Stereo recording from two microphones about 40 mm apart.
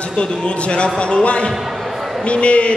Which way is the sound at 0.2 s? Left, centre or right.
Left.